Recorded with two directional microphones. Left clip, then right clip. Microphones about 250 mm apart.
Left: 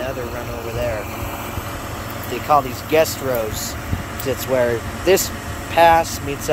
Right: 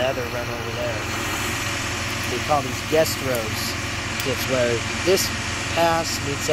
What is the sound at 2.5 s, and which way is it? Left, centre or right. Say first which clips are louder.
Speech: left 7 dB; centre.